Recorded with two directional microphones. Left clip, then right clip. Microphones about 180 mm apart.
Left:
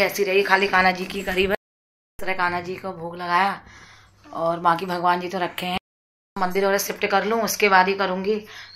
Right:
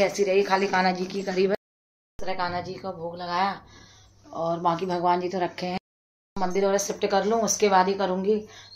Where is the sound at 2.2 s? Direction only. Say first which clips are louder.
Left 5 dB; 15° left (ahead or behind).